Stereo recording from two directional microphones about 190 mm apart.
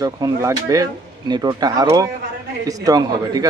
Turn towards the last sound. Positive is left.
turn(degrees=-20)  # may be behind; listen again after turning